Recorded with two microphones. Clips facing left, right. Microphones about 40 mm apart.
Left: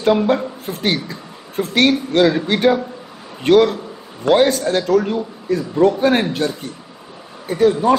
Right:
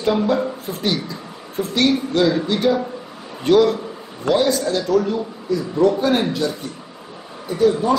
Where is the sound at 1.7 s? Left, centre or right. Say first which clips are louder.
Left 3 dB; left.